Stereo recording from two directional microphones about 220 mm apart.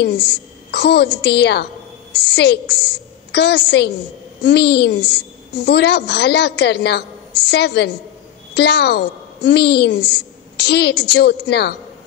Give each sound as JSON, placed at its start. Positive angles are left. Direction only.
{"t": 0.0, "sound": "a woman's voice", "side_deg": 50}